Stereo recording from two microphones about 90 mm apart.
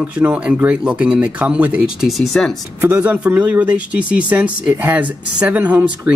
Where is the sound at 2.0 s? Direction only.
Centre (ahead or behind).